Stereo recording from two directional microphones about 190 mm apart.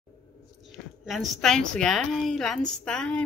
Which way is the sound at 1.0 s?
Centre (ahead or behind).